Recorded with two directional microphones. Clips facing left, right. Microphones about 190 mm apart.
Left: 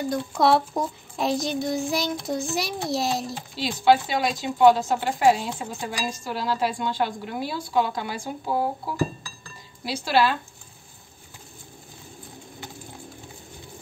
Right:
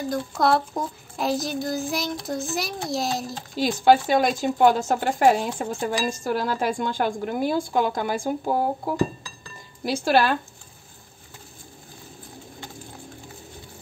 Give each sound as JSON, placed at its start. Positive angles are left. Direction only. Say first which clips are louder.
{"t": 0.1, "sound": "child singing", "louder": "left 1 dB", "side_deg": 0}
{"t": 3.5, "sound": "speech", "louder": "right 2 dB", "side_deg": -45}
{"t": 9.8, "sound": "speech", "louder": "right 2 dB", "side_deg": -45}